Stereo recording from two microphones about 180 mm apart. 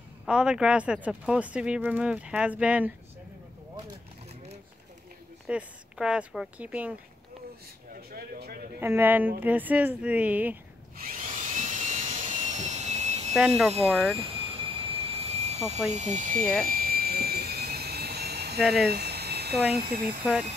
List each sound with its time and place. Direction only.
0.2 s speech: 5° right (ahead or behind)
5.5 s speech: 5° right (ahead or behind)
8.1 s speech: 60° right (ahead or behind)
8.7 s speech: 15° right (ahead or behind)
11.0 s a sound: 50° right (ahead or behind)
13.6 s speech: centre (ahead or behind)
14.9 s jet engine: 35° right (ahead or behind)
15.9 s speech: 40° right (ahead or behind)
16.6 s jet engine: 55° right (ahead or behind)
18.9 s a sound: 65° right (ahead or behind)
19.8 s speech: 55° right (ahead or behind)